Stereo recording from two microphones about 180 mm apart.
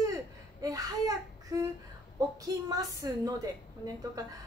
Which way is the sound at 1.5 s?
15° right (ahead or behind).